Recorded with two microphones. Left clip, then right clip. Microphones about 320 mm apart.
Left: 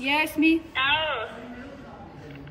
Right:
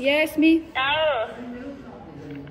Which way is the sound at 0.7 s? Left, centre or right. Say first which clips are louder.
Right 3 dB; right.